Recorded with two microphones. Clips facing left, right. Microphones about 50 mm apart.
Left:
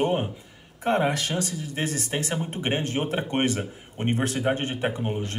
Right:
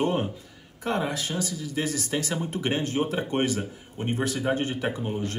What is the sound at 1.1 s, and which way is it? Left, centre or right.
Speech, left.